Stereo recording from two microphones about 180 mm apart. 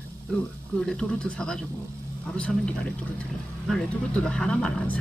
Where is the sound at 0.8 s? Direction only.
5° left (ahead or behind).